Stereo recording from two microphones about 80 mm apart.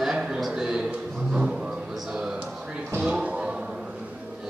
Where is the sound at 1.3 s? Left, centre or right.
Centre.